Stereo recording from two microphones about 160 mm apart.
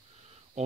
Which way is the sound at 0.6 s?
45° right (ahead or behind).